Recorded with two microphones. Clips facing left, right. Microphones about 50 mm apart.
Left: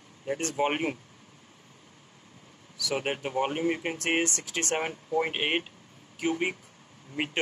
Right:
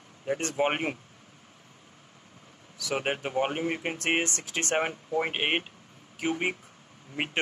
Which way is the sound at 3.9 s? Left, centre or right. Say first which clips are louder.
Even; right.